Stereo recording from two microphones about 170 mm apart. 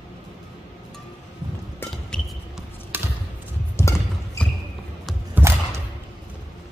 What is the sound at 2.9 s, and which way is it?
Basketball bounce, 10° right (ahead or behind).